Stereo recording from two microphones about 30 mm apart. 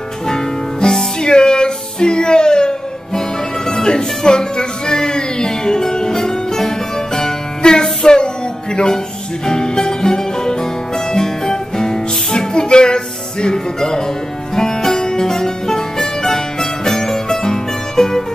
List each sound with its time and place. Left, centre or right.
0.3 s music: centre
7.6 s music: left